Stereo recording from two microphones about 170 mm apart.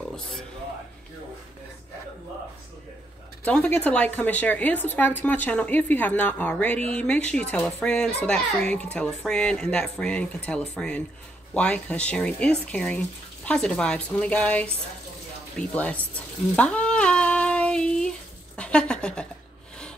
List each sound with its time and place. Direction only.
3.4 s speech: 10° left (ahead or behind)
15.7 s speech: 10° left (ahead or behind)
16.5 s a sound: 5° left (ahead or behind)
18.6 s speech: 5° left (ahead or behind)